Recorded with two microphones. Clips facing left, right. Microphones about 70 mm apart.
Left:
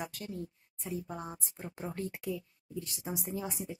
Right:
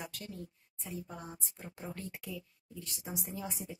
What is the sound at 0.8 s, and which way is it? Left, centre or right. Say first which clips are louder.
Speech: left 5 dB; left.